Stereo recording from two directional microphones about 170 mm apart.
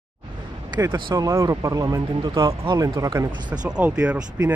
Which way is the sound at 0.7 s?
25° right (ahead or behind).